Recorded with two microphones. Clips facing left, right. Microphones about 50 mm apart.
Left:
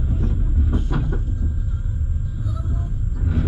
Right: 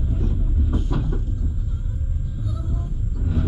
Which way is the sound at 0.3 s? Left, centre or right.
Left.